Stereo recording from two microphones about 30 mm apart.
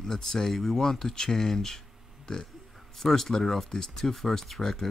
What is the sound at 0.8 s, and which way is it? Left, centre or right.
Speech, centre.